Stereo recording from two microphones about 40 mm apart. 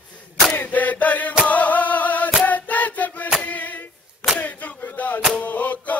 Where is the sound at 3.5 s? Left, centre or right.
Left.